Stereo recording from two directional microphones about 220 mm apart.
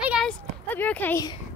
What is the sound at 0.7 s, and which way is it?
Speech, 10° left (ahead or behind).